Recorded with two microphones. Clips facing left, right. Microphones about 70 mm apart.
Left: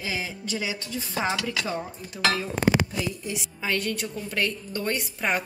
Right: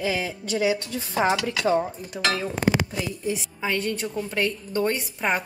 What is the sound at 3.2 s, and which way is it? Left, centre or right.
A woman's voice, right.